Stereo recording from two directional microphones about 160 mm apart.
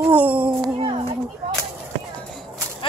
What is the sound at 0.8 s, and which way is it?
Speech, 35° right (ahead or behind).